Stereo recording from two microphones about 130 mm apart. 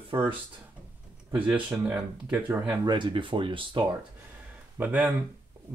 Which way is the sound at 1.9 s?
10° right (ahead or behind).